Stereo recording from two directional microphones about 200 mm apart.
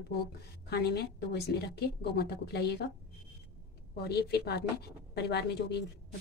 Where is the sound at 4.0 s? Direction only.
55° left (ahead or behind).